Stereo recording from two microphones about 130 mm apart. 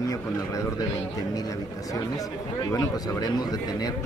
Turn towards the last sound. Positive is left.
turn(degrees=30)  # may be behind; listen again after turning